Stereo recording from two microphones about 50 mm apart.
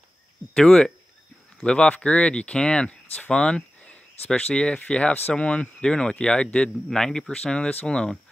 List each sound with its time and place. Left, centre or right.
0.6 s speech: centre